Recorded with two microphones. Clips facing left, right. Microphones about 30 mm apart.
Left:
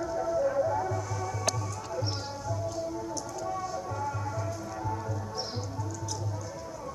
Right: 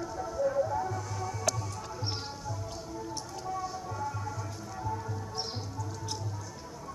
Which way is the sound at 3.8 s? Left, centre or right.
Centre.